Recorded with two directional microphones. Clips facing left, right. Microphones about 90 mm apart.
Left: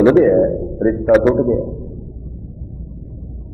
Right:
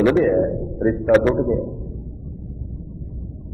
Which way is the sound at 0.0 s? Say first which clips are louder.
Left 6 dB; 30° left (ahead or behind).